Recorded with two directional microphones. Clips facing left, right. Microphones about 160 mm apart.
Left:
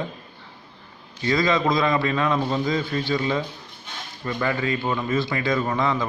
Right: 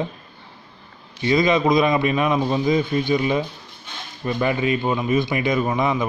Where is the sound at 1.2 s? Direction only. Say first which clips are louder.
Right 3 dB; 20° right (ahead or behind).